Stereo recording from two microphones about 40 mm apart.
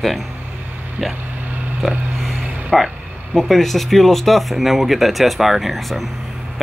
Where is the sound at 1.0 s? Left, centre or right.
Right.